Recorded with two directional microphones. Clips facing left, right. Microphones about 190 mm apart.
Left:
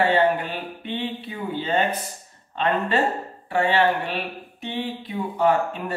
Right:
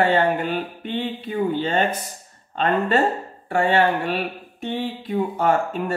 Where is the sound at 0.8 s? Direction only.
45° right (ahead or behind).